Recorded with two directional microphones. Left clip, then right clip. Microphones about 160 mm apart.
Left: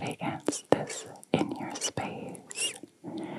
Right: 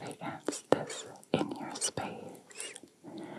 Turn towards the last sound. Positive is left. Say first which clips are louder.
# left 6 dB
turn(degrees=30)  # may be behind; listen again after turning